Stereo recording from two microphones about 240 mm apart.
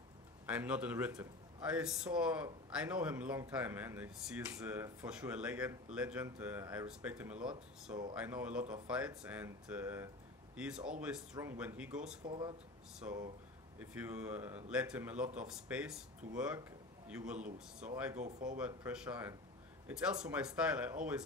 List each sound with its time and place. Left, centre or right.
0.5 s a man's voice: centre
12.3 s speech: centre
13.0 s a man's voice: centre
18.2 s speech: right
18.6 s a man's voice: centre